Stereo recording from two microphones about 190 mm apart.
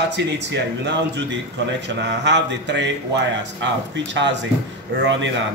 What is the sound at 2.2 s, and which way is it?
Speech, 65° right (ahead or behind).